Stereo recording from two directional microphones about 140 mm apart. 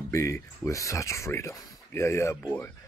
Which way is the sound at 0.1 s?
20° left (ahead or behind).